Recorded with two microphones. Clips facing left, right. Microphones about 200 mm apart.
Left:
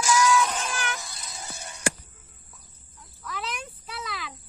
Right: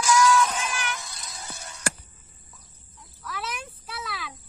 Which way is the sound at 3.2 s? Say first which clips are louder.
Even; centre (ahead or behind).